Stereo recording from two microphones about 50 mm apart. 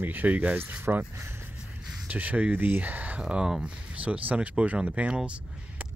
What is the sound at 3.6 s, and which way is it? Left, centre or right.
Speech, right.